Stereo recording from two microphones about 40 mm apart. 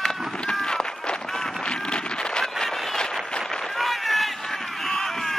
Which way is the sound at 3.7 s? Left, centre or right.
Centre.